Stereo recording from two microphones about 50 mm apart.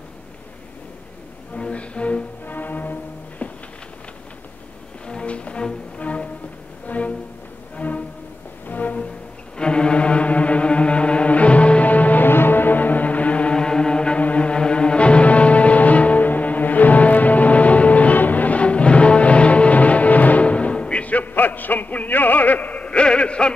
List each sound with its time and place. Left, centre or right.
1.6 s music: left
2.4 s music: left
5.0 s music: left
9.6 s music: centre
12.3 s music: left